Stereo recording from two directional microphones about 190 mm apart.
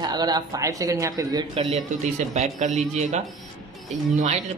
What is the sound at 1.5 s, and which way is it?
A man's voice, 35° right (ahead or behind).